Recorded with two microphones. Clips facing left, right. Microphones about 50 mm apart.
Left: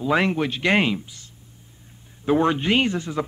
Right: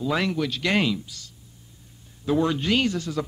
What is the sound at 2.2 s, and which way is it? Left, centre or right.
Speech, left.